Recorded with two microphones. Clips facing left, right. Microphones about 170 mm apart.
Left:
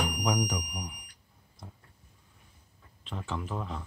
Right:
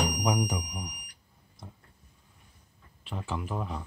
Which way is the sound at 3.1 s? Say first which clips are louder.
Right 1 dB; 5° right (ahead or behind).